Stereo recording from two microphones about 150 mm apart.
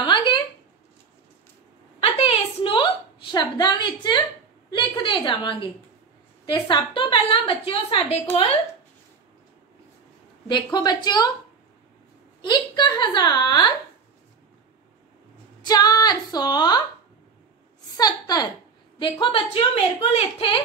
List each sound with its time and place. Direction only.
0.0 s a sound: 30° left (ahead or behind)
2.0 s a sound: 40° left (ahead or behind)
6.4 s a woman's voice: 30° left (ahead or behind)
10.5 s a woman's voice: 30° left (ahead or behind)
12.4 s a woman's voice: 30° left (ahead or behind)
15.6 s a woman's voice: 25° left (ahead or behind)
17.9 s a woman's voice: 25° left (ahead or behind)